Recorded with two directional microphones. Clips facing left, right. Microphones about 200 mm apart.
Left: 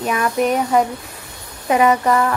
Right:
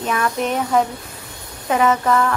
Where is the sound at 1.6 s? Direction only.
15° left (ahead or behind).